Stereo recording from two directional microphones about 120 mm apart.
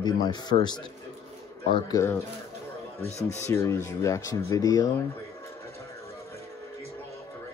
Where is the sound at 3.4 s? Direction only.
25° left (ahead or behind).